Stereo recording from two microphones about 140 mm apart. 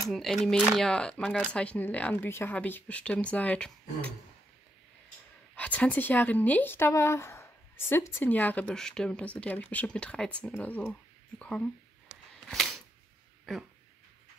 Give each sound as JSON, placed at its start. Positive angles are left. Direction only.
{"t": 0.1, "sound": "speech", "side_deg": 0}
{"t": 5.6, "sound": "speech", "side_deg": 10}
{"t": 10.9, "sound": "a sound", "side_deg": 10}